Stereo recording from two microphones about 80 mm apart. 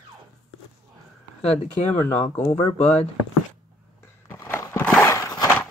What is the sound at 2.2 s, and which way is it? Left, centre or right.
Speech, left.